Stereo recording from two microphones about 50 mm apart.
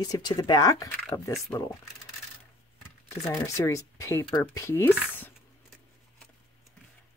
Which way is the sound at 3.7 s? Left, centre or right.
Left.